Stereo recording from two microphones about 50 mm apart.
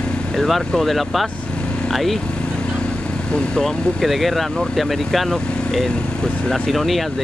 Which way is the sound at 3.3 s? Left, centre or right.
Centre.